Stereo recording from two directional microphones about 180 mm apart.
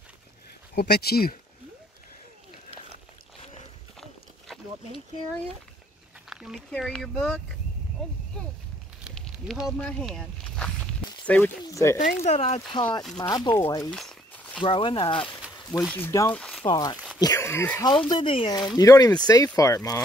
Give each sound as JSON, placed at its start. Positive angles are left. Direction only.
{"t": 0.7, "sound": "speech", "side_deg": 60}
{"t": 6.2, "sound": "speech", "side_deg": -5}
{"t": 9.0, "sound": "a sound", "side_deg": 0}
{"t": 11.2, "sound": "speech", "side_deg": 10}
{"t": 12.2, "sound": "speech", "side_deg": 35}
{"t": 13.3, "sound": "speech", "side_deg": 15}
{"t": 13.9, "sound": "a sound", "side_deg": 5}
{"t": 14.6, "sound": "speech", "side_deg": 30}
{"t": 15.4, "sound": "a sound", "side_deg": -5}
{"t": 15.9, "sound": "speech", "side_deg": 15}
{"t": 16.3, "sound": "a sound", "side_deg": 5}
{"t": 16.6, "sound": "speech", "side_deg": 20}